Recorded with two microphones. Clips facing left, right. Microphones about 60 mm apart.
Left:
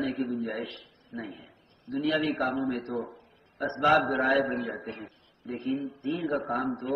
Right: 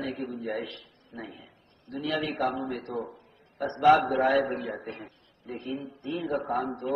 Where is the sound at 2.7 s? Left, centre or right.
Left.